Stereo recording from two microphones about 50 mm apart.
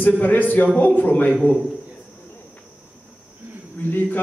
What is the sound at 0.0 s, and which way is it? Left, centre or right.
A man's voice, left.